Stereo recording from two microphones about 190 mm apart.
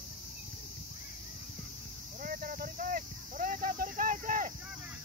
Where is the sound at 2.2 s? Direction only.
50° right (ahead or behind).